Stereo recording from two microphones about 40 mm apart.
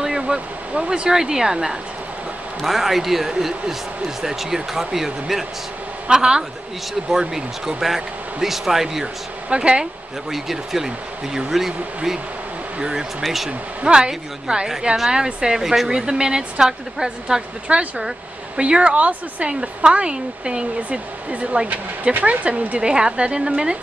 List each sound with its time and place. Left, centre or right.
0.0 s a sound: centre
0.7 s speech: right; by 5.4 s centre
6.0 s speech: right
9.0 s speech: right
10.3 s speech: centre
13.2 s speech: centre
13.5 s speech: right
17.6 s speech: right
22.8 s speech: right